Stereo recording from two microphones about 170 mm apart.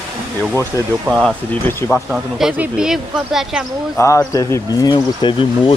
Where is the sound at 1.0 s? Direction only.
Centre (ahead or behind).